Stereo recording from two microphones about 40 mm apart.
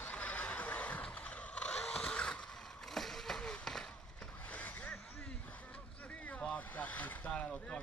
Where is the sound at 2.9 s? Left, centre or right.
Centre.